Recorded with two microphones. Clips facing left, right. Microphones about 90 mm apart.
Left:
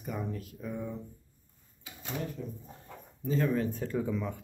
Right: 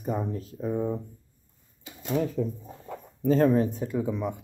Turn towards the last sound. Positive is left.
turn(degrees=-20)  # may be behind; listen again after turning